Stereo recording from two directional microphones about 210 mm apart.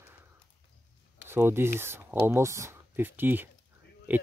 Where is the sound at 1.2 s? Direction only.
10° right (ahead or behind).